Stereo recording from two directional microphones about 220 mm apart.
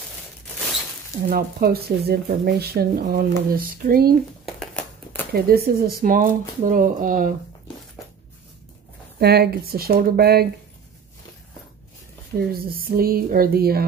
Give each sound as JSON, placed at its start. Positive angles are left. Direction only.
{"t": 1.3, "sound": "speech", "side_deg": -45}
{"t": 4.5, "sound": "a sound", "side_deg": 5}
{"t": 5.3, "sound": "speech", "side_deg": -45}
{"t": 9.2, "sound": "speech", "side_deg": -45}
{"t": 12.4, "sound": "speech", "side_deg": -45}